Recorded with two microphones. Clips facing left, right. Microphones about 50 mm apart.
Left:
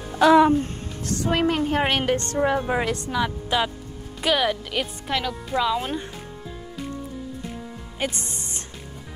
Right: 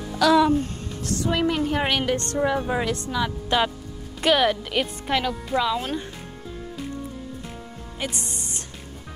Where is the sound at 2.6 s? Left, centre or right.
Left.